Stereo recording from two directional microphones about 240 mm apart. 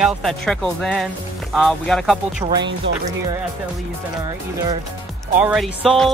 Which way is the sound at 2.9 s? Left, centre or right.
Right.